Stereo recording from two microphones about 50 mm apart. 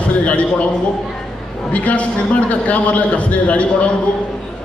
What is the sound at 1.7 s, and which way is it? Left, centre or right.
A man's voice, left.